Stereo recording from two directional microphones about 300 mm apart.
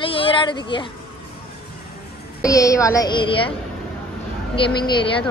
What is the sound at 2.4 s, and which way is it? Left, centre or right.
Speech, centre.